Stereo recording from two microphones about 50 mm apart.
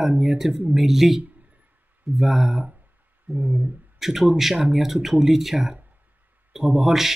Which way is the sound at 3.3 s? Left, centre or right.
Right.